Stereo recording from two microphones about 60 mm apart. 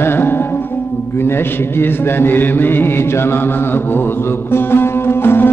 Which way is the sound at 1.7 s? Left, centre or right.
Left.